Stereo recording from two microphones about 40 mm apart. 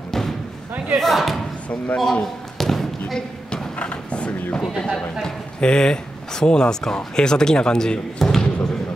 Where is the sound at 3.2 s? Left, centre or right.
Left.